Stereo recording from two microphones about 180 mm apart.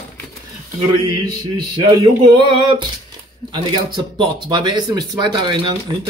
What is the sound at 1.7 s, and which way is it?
Speech, 25° right (ahead or behind).